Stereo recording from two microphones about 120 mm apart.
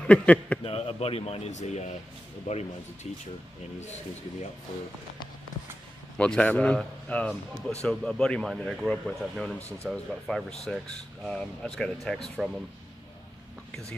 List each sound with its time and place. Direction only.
0.0 s a man's voice: 10° left (ahead or behind)
0.7 s speech: 55° left (ahead or behind)
6.1 s a man's voice: 10° left (ahead or behind)